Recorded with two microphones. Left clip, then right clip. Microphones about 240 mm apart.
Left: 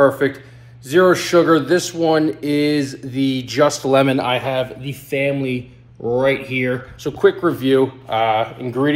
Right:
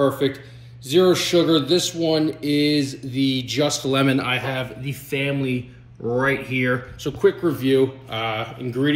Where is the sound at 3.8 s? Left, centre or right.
Centre.